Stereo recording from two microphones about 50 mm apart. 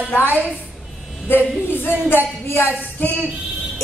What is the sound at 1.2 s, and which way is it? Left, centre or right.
Speech, left.